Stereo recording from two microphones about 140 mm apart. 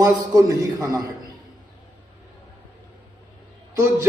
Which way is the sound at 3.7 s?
25° right (ahead or behind).